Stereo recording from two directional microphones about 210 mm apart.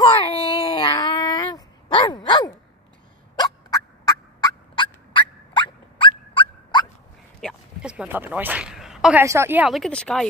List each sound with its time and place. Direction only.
0.0 s a sound: 25° left (ahead or behind)
3.3 s fowl: 20° left (ahead or behind)
7.3 s a woman's voice: centre (ahead or behind)